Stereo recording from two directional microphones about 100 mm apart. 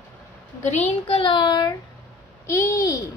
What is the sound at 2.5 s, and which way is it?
Speech, 30° left (ahead or behind).